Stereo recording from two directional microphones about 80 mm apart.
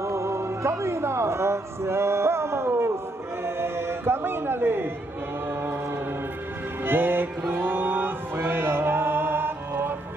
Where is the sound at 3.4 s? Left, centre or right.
Right.